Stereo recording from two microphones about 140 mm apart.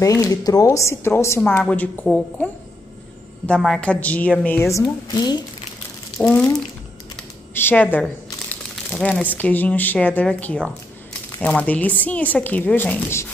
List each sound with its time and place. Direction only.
0.0 s a woman's voice: 25° left (ahead or behind)
6.2 s a woman's voice: 5° left (ahead or behind)